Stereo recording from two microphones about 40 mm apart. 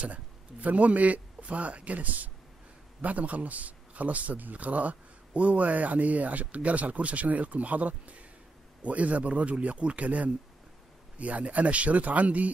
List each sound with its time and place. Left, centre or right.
0.0 s a man's voice: right